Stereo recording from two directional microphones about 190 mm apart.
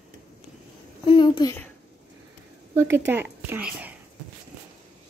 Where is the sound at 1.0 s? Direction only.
25° left (ahead or behind).